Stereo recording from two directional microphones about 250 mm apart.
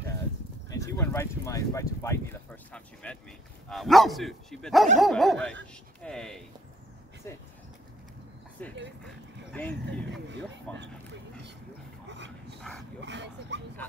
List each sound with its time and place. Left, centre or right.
0.7 s speech: centre
8.6 s speech: centre
9.8 s speech: right
10.7 s speech: centre
12.1 s dog: right
13.0 s speech: right